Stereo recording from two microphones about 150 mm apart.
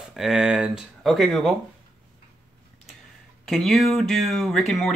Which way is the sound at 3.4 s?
Centre (ahead or behind).